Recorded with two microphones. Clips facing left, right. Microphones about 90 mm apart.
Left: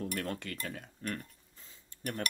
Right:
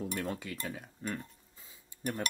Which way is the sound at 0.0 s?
5° right (ahead or behind).